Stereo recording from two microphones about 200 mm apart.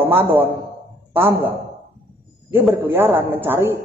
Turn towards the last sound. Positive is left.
turn(degrees=-10)  # may be behind; listen again after turning